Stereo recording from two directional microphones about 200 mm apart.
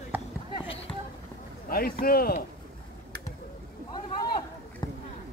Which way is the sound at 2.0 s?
50° left (ahead or behind).